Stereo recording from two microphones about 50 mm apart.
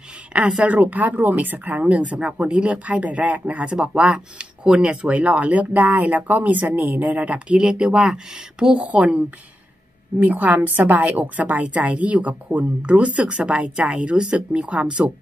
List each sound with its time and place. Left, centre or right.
0.7 s speech: right; by 8.8 s centre
8.8 s speech: right